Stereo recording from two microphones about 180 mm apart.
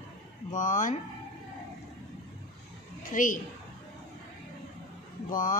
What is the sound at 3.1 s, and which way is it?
Speech, 45° left (ahead or behind).